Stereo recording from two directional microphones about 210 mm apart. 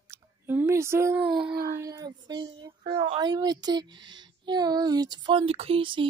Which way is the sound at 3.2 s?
20° right (ahead or behind).